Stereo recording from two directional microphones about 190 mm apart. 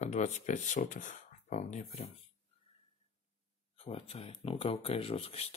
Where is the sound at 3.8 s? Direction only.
30° left (ahead or behind).